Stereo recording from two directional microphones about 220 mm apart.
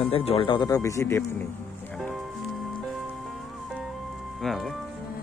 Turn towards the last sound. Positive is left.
turn(degrees=0)  # may be behind; listen again after turning